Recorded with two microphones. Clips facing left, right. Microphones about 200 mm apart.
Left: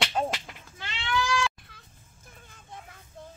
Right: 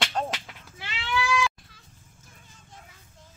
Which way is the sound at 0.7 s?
5° right (ahead or behind).